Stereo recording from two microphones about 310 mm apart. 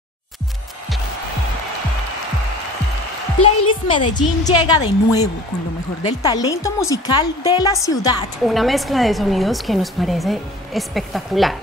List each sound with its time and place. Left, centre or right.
3.6 s a sound: centre
4.1 s a woman's voice: centre
8.5 s speech: centre